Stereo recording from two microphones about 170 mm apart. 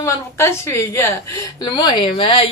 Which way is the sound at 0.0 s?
15° left (ahead or behind).